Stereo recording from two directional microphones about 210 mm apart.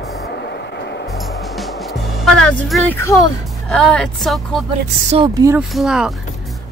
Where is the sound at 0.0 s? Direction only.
50° left (ahead or behind).